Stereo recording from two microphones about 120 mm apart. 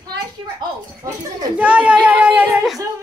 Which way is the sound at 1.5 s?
10° right (ahead or behind).